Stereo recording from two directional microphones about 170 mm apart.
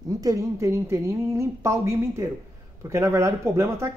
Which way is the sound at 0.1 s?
20° right (ahead or behind).